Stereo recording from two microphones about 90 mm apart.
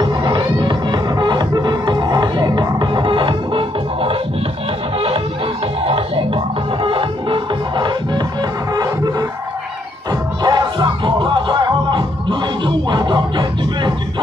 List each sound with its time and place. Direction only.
0.0 s music: 55° right (ahead or behind)
10.4 s music: 55° right (ahead or behind)